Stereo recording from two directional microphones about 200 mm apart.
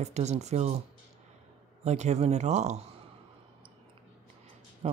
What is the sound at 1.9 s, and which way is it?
Speech, 35° right (ahead or behind).